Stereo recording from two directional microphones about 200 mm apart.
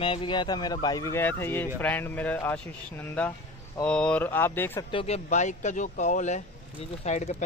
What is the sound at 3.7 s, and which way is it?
Speech, 5° left (ahead or behind).